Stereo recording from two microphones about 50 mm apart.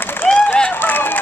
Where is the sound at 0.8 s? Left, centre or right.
Left.